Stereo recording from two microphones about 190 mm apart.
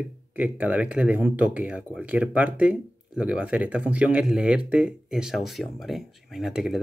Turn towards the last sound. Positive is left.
turn(degrees=0)  # may be behind; listen again after turning